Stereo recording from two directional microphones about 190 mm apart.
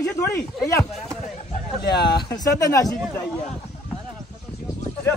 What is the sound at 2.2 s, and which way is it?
Speech, 20° left (ahead or behind).